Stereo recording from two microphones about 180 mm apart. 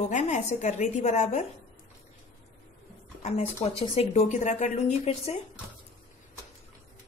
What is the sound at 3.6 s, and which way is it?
Speech, 35° left (ahead or behind).